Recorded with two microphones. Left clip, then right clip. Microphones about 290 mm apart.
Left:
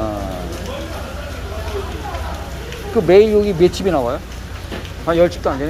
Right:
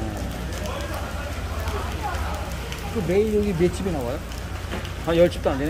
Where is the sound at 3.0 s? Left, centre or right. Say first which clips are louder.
Left 11 dB; centre.